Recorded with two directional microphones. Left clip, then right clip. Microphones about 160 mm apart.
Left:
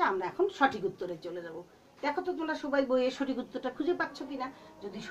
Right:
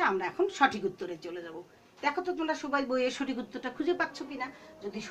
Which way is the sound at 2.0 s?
25° right (ahead or behind).